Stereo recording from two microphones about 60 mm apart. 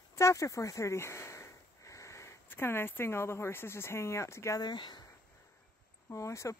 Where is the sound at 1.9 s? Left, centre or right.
Left.